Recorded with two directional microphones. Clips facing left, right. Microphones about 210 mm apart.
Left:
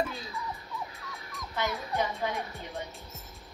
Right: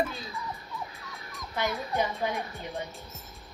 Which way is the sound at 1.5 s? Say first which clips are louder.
Right 2 dB; 15° right (ahead or behind).